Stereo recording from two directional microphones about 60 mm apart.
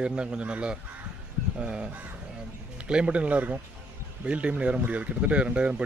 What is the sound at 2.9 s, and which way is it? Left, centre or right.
Speech, centre.